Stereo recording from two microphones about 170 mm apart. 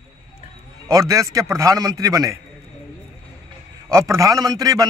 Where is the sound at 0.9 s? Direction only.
20° right (ahead or behind).